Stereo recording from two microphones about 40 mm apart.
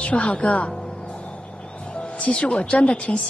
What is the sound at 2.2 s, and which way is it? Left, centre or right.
Speech, left.